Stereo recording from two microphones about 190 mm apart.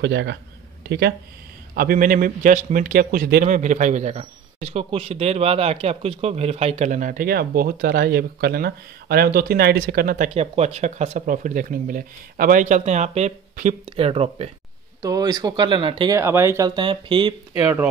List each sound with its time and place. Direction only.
0.0 s a man's voice: 65° right (ahead or behind)
1.8 s speech: 50° right (ahead or behind); by 14.5 s 30° right (ahead or behind)
15.0 s speech: 20° right (ahead or behind)
16.2 s speech: 15° right (ahead or behind)